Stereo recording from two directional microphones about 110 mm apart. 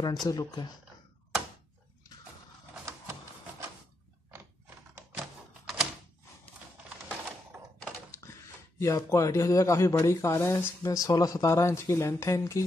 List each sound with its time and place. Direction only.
0.0 s speech: 40° left (ahead or behind)
4.3 s a sound: 20° right (ahead or behind)
8.2 s speech: 25° left (ahead or behind)